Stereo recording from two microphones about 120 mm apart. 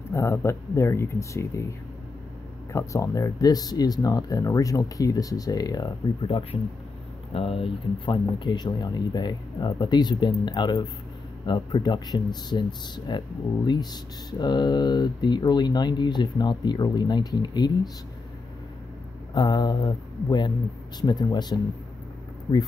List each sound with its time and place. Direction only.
0.1 s speech: 25° left (ahead or behind)
2.7 s speech: 25° left (ahead or behind)
7.3 s speech: 50° left (ahead or behind)
14.4 s speech: 35° left (ahead or behind)
19.3 s speech: 35° left (ahead or behind)